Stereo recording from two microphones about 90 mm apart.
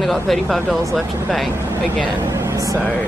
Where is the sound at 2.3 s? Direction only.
35° right (ahead or behind).